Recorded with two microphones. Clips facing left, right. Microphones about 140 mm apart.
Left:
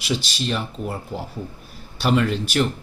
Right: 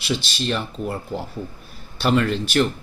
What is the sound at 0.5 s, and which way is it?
Speech, 5° left (ahead or behind).